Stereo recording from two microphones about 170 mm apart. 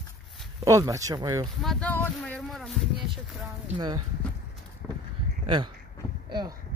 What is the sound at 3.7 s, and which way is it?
Speech, 25° right (ahead or behind).